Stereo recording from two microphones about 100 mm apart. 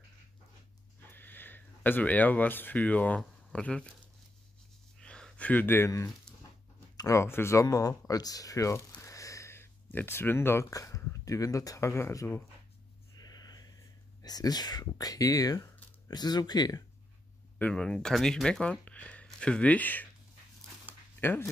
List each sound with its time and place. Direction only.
1.1 s speech: 20° left (ahead or behind)
4.9 s a sound: 5° left (ahead or behind)
7.0 s speech: 30° left (ahead or behind)
7.6 s speech: 35° left (ahead or behind)
9.0 s a sound: 30° left (ahead or behind)
10.7 s speech: 35° left (ahead or behind)
13.1 s a sound: 40° left (ahead or behind)
14.2 s speech: 40° left (ahead or behind)
17.6 s speech: 10° left (ahead or behind)
21.2 s speech: 20° left (ahead or behind)